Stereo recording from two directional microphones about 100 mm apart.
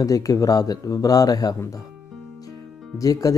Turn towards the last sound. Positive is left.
turn(degrees=35)  # may be behind; listen again after turning